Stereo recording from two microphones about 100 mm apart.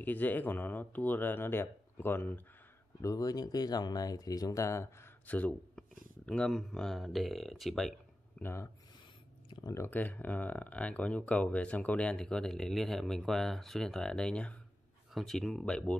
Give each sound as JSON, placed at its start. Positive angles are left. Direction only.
{"t": 0.0, "sound": "speech", "side_deg": 20}
{"t": 3.0, "sound": "speech", "side_deg": 35}
{"t": 5.2, "sound": "speech", "side_deg": 15}
{"t": 8.4, "sound": "speech", "side_deg": 20}
{"t": 9.7, "sound": "speech", "side_deg": 20}